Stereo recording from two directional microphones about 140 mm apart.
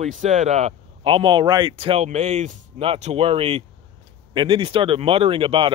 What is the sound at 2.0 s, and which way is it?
Speech, 55° right (ahead or behind).